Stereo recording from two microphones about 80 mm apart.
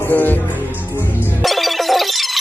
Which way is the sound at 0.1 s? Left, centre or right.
Left.